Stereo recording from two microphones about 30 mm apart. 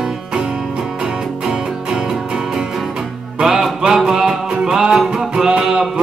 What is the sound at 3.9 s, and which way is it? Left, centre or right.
Music, centre.